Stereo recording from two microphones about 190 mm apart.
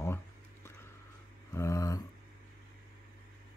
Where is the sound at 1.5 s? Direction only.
15° left (ahead or behind).